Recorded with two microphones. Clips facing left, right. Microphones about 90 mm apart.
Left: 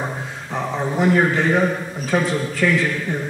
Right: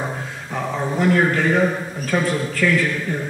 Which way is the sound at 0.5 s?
15° left (ahead or behind).